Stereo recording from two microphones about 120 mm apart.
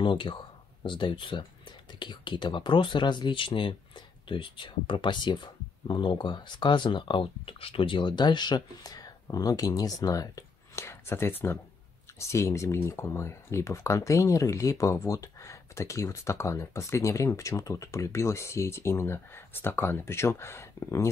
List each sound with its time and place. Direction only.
0.0 s speech: 45° left (ahead or behind); by 21.1 s 25° left (ahead or behind)